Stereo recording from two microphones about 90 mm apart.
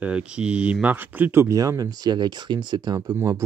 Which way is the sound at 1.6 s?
40° right (ahead or behind).